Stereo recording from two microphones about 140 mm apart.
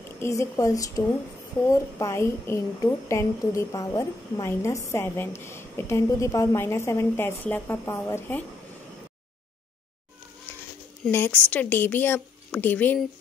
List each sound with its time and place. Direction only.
0.2 s a woman's voice: 20° left (ahead or behind)
11.1 s speech: 15° left (ahead or behind)